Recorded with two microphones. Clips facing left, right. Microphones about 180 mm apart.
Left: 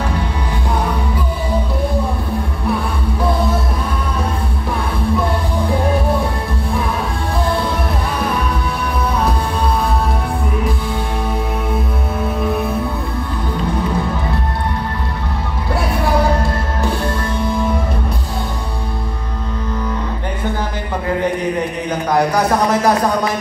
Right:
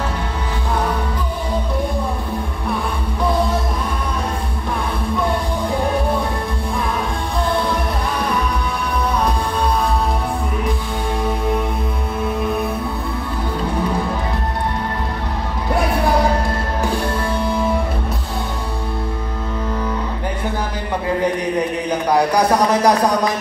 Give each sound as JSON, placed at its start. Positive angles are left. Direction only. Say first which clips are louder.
{"t": 22.3, "sound": "music", "louder": "even", "side_deg": -15}